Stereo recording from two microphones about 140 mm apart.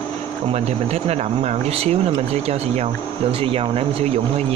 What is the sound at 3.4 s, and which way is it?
Speech, 45° right (ahead or behind).